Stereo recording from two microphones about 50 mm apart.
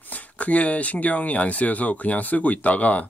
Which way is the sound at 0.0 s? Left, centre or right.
Left.